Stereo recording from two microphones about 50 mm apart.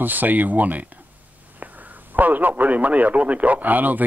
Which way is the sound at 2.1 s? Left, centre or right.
Right.